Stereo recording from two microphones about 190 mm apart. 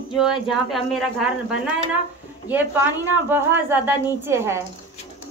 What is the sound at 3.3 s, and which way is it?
A woman's voice, 10° right (ahead or behind).